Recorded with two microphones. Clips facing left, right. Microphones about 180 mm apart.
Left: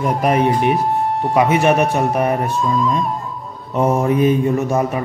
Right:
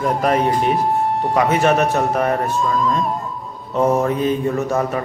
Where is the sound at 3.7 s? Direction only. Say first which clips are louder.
Left 1 dB; 15° left (ahead or behind).